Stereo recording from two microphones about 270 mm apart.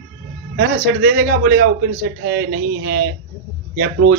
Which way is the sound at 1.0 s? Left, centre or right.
Right.